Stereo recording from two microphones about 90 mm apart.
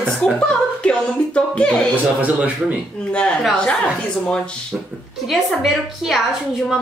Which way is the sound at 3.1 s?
10° left (ahead or behind).